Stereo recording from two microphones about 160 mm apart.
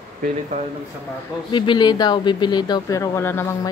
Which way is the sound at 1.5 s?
25° left (ahead or behind).